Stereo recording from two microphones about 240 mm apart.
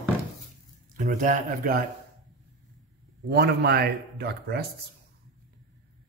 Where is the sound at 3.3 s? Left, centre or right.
Right.